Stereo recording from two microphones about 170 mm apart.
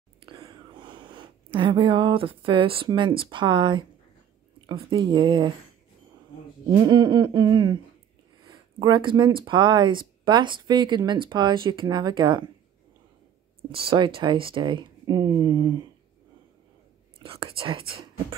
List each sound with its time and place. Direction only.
0.2 s speech: 30° right (ahead or behind)
6.7 s speech: 25° right (ahead or behind)
13.7 s speech: 30° right (ahead or behind)
17.2 s speech: 30° right (ahead or behind)